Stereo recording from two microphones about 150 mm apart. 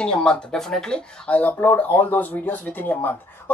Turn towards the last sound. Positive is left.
turn(degrees=10)  # may be behind; listen again after turning